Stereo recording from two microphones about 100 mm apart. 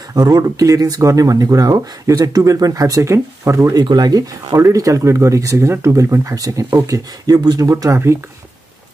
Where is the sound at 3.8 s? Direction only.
45° right (ahead or behind).